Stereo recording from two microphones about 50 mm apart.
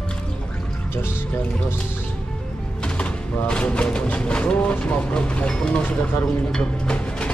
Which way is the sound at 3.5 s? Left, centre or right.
Left.